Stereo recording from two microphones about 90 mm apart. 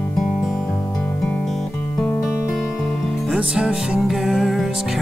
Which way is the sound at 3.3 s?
5° right (ahead or behind).